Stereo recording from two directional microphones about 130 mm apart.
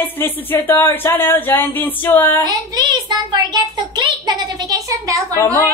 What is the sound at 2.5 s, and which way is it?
A child's voice, 30° right (ahead or behind).